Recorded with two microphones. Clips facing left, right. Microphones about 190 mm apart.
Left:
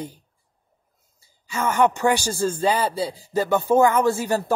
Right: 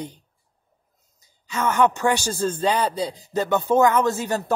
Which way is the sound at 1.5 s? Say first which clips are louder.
Even; 10° left (ahead or behind).